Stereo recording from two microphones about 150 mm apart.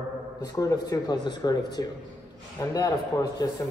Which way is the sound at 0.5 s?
25° left (ahead or behind).